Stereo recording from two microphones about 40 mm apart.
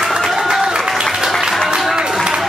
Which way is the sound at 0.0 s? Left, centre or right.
Centre.